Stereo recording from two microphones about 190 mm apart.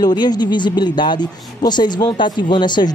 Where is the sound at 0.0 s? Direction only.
20° left (ahead or behind).